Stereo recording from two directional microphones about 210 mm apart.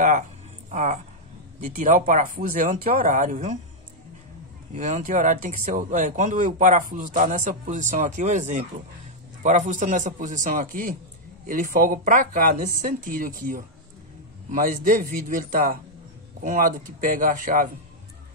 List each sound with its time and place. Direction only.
0.7 s speech: 35° right (ahead or behind)
4.7 s speech: 35° right (ahead or behind)